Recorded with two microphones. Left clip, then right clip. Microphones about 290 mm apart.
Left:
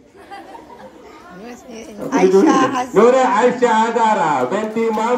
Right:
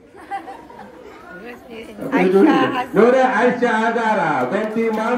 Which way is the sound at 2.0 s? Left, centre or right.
Left.